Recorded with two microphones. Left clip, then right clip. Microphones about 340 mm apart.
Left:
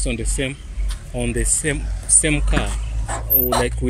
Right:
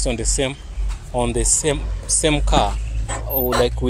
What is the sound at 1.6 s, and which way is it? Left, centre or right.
Speech, centre.